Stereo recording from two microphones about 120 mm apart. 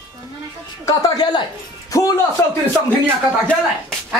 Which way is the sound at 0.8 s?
30° left (ahead or behind).